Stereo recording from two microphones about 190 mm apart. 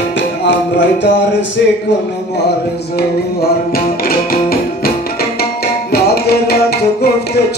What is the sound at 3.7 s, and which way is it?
Music, 50° left (ahead or behind).